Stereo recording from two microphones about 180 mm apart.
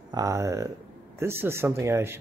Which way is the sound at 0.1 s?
20° right (ahead or behind).